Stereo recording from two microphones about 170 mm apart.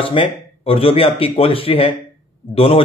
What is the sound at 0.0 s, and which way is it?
Speech, 30° left (ahead or behind).